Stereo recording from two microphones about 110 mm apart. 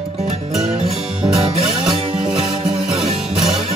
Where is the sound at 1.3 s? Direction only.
65° right (ahead or behind).